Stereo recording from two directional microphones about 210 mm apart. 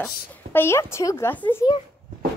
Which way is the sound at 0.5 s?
10° left (ahead or behind).